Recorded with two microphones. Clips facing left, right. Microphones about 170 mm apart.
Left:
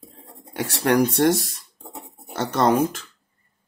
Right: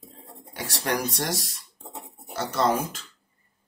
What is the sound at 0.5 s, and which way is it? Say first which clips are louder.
Speech: left 9 dB; 55° left (ahead or behind).